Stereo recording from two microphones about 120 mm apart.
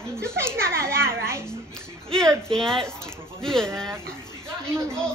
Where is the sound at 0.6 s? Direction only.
20° right (ahead or behind).